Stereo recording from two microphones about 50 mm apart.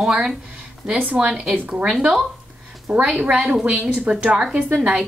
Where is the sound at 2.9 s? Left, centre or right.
Right.